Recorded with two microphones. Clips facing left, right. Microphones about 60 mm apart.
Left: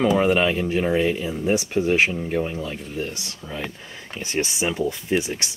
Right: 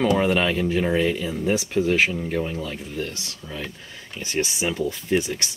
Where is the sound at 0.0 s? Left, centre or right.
Centre.